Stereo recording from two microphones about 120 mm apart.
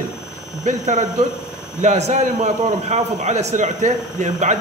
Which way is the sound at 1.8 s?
70° right (ahead or behind).